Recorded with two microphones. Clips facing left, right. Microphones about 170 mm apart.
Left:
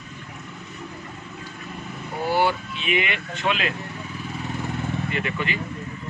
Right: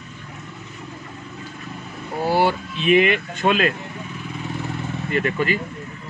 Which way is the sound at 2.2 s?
40° right (ahead or behind).